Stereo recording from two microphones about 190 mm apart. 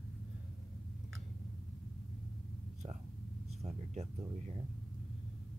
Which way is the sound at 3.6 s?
35° right (ahead or behind).